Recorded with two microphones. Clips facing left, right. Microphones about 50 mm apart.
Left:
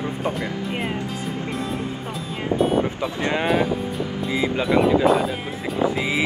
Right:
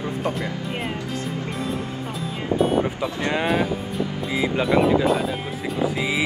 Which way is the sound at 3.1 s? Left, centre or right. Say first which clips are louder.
Left 1 dB; left.